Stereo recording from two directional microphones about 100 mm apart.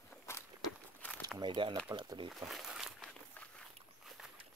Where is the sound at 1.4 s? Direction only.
50° right (ahead or behind).